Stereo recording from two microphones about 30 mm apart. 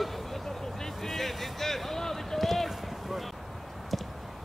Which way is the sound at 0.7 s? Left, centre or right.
Centre.